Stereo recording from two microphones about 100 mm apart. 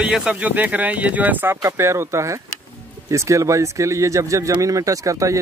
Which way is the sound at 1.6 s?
30° right (ahead or behind).